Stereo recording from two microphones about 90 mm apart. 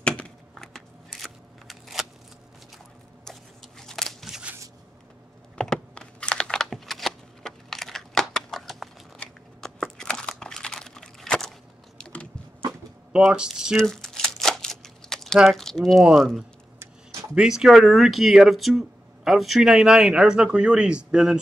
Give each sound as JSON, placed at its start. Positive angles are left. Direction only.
{"t": 0.0, "sound": "a sound", "side_deg": 10}
{"t": 3.3, "sound": "a sound", "side_deg": 5}
{"t": 5.6, "sound": "computer keyboard", "side_deg": 10}
{"t": 12.0, "sound": "biting", "side_deg": 15}
{"t": 13.3, "sound": "speech", "side_deg": -10}
{"t": 13.7, "sound": "crumpling", "side_deg": 5}
{"t": 15.3, "sound": "speech", "side_deg": 5}
{"t": 16.0, "sound": "speech", "side_deg": -5}
{"t": 16.8, "sound": "a sound", "side_deg": -35}
{"t": 17.4, "sound": "speech", "side_deg": -5}